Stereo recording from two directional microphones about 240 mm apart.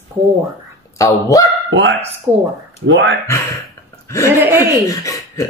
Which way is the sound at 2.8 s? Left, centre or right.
Right.